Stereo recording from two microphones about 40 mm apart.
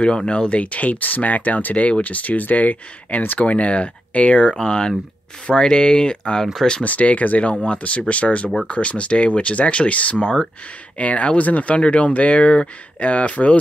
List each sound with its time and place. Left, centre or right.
0.0 s speech: left
4.6 s speech: left
6.4 s speech: centre
6.8 s speech: left